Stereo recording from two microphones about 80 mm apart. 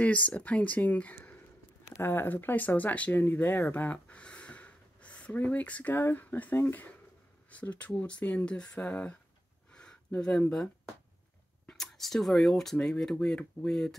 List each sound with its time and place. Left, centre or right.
0.0 s speech: centre
9.7 s a sound: centre
11.7 s speech: centre